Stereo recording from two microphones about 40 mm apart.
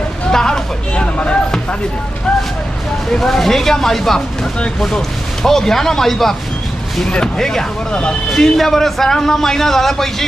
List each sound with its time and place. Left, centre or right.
0.3 s hubbub: centre
0.9 s a sound: left
3.1 s a man's voice: centre
7.1 s speech: centre
8.3 s a man's voice: centre